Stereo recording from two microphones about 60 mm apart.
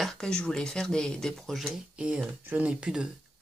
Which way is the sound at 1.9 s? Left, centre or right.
Centre.